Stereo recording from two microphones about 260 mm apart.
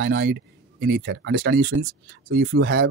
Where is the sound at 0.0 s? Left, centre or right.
Right.